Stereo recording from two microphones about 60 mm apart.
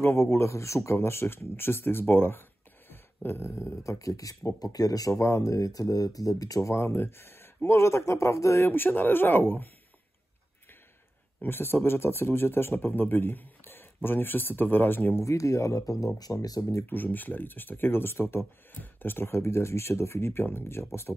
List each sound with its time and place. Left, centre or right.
0.0 s speech: left
2.9 s a sound: left
4.0 s speech: left
4.5 s speech: left
6.7 s speech: left
8.6 s speech: left
11.4 s speech: left
15.2 s speech: left
16.8 s speech: left